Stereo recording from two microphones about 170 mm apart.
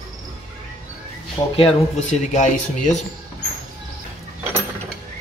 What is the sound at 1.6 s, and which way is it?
Speech, 45° left (ahead or behind).